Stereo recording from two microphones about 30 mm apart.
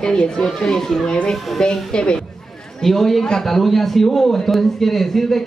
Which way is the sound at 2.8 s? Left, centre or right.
Centre.